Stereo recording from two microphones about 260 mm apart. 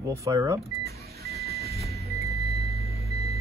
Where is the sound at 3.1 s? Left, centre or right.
Left.